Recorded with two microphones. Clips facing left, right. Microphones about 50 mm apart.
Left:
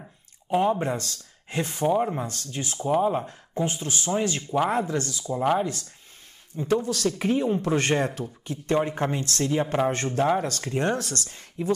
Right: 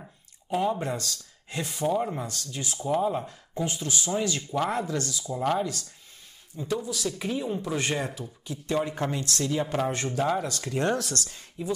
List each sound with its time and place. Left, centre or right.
0.5 s speech: left
1.9 s speech: centre
2.2 s speech: left
2.9 s speech: centre
3.3 s speech: left
5.4 s speech: centre
6.7 s speech: left
11.0 s speech: left